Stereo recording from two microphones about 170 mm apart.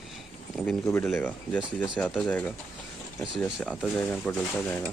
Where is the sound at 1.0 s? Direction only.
5° left (ahead or behind).